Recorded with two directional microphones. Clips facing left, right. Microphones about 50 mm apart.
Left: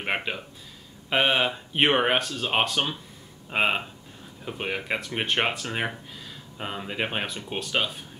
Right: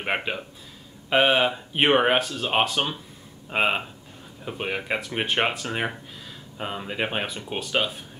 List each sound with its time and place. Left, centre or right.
0.0 s speech: centre